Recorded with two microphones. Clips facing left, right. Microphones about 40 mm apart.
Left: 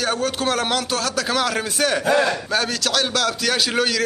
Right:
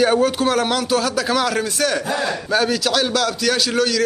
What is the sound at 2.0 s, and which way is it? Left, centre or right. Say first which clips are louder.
Speech: left 4 dB; left.